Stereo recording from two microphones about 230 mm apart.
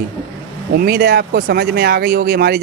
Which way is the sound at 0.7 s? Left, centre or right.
Right.